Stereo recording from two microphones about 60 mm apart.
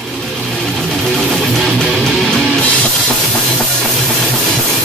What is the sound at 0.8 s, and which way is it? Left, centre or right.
Music, centre.